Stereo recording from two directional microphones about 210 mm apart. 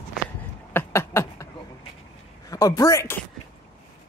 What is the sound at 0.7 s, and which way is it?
Beatboxing, 10° left (ahead or behind).